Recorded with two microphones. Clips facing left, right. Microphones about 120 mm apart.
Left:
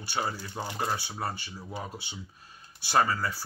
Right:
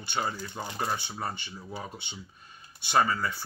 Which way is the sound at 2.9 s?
5° left (ahead or behind).